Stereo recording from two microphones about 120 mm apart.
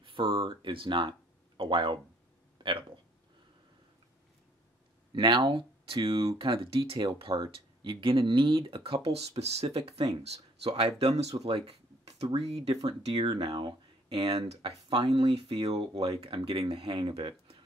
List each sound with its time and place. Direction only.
0.0 s speech: 45° right (ahead or behind)
5.1 s speech: 40° right (ahead or behind); by 11.3 s 60° right (ahead or behind)
11.4 s a sound: 55° right (ahead or behind)
12.3 s speech: 60° right (ahead or behind)
13.0 s speech: 50° right (ahead or behind)